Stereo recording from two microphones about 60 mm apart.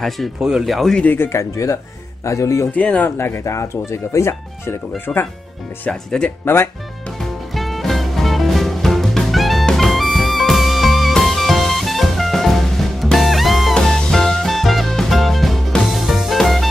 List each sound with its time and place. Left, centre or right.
0.4 s speech: centre
0.7 s speech: centre
1.1 s speech: left
1.4 s speech: left
2.7 s speech: left
3.2 s speech: left
4.9 s speech: left
5.9 s speech: centre
6.4 s speech: left
7.2 s music: centre